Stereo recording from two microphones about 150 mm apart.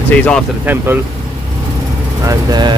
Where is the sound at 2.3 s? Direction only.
25° right (ahead or behind).